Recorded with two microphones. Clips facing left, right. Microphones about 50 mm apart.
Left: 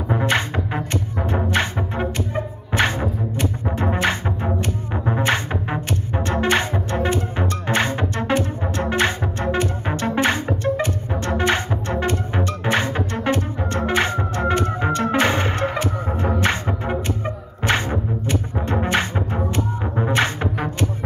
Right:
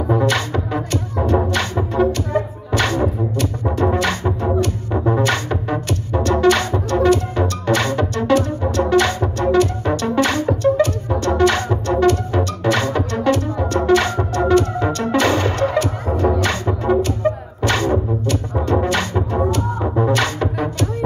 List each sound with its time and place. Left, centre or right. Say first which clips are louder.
0.1 s music: right 2 dB; left